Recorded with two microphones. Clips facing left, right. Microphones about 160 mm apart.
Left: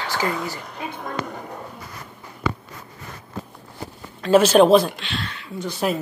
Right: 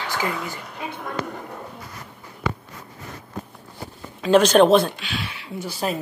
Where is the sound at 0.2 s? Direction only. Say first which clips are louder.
Left 3 dB; 30° left (ahead or behind).